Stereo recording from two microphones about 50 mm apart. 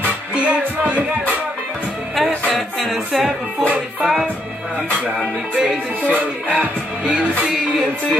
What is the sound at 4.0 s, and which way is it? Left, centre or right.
Music, centre.